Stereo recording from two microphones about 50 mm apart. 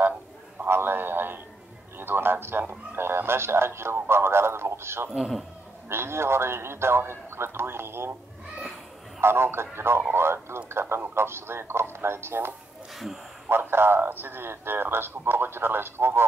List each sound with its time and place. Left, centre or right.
0.7 s a sound: right
2.9 s radio: right
5.9 s a man's voice: right
9.2 s a man's voice: right